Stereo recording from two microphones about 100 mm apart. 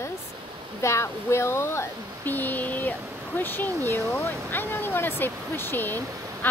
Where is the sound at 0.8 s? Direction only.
30° left (ahead or behind).